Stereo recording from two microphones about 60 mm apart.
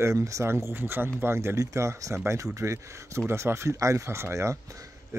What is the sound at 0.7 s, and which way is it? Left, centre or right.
Speech, right.